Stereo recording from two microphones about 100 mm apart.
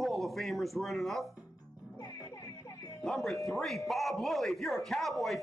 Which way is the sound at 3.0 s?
5° left (ahead or behind).